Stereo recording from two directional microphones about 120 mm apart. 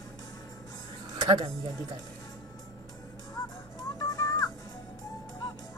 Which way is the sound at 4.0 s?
30° left (ahead or behind).